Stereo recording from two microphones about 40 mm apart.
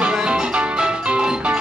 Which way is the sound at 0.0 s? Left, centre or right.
Right.